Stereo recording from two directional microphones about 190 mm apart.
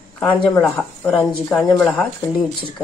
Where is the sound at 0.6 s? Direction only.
5° left (ahead or behind).